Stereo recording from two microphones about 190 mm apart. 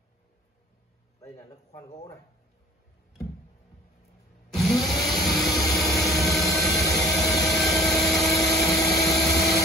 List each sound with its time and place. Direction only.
4.6 s vehicle: centre (ahead or behind)